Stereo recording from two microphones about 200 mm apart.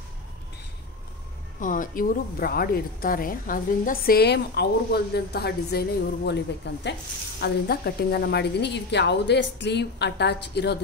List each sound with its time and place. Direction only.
1.6 s a woman's voice: 40° left (ahead or behind)